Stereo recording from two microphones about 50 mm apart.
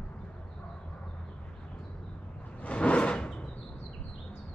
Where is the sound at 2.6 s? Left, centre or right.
Left.